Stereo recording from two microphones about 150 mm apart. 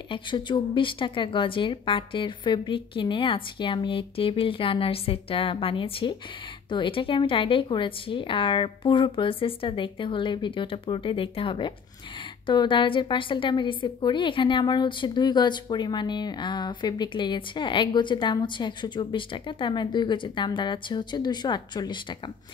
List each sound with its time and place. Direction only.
0.1 s a woman's voice: 35° left (ahead or behind)